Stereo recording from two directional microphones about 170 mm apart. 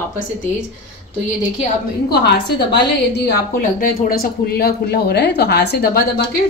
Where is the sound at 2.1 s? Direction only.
75° left (ahead or behind).